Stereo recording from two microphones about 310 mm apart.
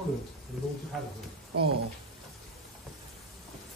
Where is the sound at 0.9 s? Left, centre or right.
Centre.